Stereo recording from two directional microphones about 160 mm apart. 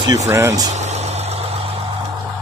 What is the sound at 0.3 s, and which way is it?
Speech, 15° right (ahead or behind).